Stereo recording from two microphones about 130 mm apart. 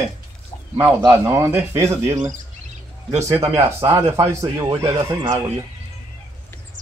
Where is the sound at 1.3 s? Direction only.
20° right (ahead or behind).